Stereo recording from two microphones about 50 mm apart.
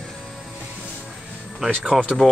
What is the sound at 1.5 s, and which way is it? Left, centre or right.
Speech, centre.